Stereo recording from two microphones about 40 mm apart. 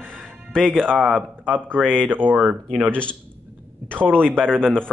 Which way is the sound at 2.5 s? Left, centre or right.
Right.